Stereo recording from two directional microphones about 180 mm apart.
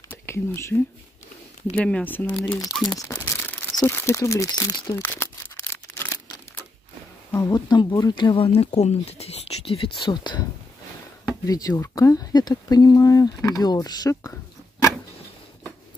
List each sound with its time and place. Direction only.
0.1 s speech: 15° left (ahead or behind)
3.0 s speech: 15° left (ahead or behind)
5.0 s a sound: 10° left (ahead or behind)
7.3 s speech: 20° left (ahead or behind)
11.4 s speech: 20° left (ahead or behind)